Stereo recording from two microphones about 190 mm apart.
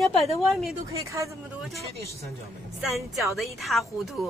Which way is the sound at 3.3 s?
Centre (ahead or behind).